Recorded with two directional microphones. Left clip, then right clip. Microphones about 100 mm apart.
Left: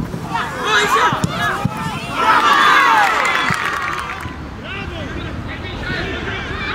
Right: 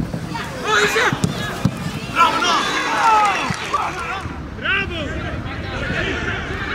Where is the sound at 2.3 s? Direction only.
30° left (ahead or behind).